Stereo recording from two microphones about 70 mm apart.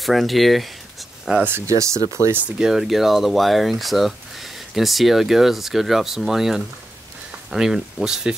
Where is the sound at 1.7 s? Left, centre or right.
Right.